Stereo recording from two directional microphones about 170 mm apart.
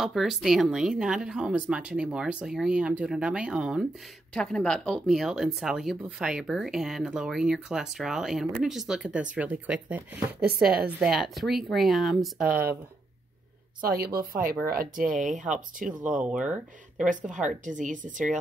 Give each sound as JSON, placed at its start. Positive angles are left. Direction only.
{"t": 0.0, "sound": "speech", "side_deg": 0}
{"t": 13.9, "sound": "speech", "side_deg": -60}
{"t": 16.2, "sound": "speech", "side_deg": -5}
{"t": 17.1, "sound": "speech", "side_deg": -50}